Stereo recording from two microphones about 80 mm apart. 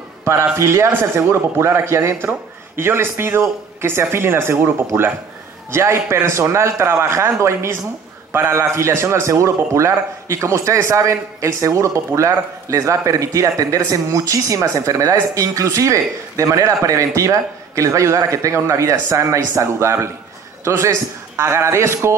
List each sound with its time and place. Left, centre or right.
0.2 s speech: right